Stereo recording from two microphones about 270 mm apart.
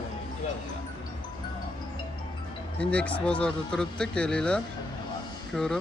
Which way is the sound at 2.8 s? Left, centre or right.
Centre.